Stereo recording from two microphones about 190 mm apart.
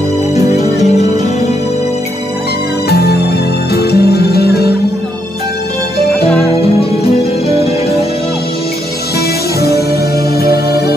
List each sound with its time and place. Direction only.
0.6 s music: 35° left (ahead or behind)
2.9 s music: 55° left (ahead or behind)
6.4 s music: 30° left (ahead or behind)
9.6 s music: 55° left (ahead or behind)